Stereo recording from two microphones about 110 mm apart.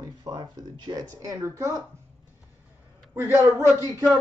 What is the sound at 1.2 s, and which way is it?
Speech, 30° right (ahead or behind).